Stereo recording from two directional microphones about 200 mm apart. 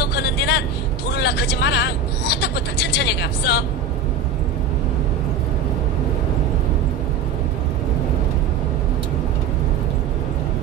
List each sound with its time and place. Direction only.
0.0 s vehicle: 55° left (ahead or behind)
1.1 s speech: 55° left (ahead or behind)